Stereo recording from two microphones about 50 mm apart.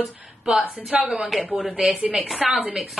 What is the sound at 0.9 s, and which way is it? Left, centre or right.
Speech, centre.